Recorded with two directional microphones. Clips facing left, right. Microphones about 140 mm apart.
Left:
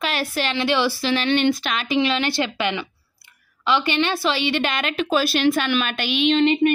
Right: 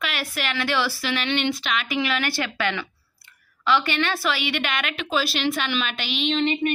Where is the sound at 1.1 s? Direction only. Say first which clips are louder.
Left 6 dB; 40° left (ahead or behind).